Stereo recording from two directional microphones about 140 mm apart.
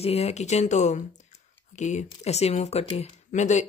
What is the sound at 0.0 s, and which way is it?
Speech, 50° left (ahead or behind).